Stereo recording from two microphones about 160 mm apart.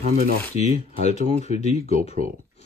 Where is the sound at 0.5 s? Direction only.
45° left (ahead or behind).